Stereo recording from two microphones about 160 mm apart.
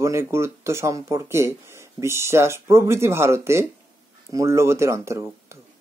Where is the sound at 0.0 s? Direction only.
15° right (ahead or behind).